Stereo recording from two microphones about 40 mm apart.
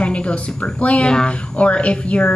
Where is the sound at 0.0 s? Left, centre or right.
Left.